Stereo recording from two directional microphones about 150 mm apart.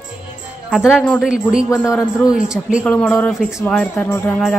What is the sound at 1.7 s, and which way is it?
Speech, 15° left (ahead or behind).